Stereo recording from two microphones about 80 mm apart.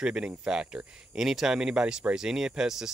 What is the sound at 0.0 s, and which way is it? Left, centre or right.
Speech, centre.